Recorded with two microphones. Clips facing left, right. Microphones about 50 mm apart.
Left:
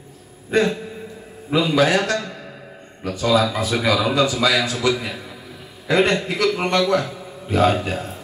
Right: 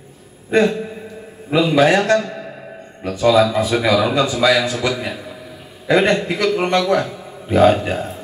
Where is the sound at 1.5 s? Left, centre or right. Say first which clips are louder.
Right 3 dB; right.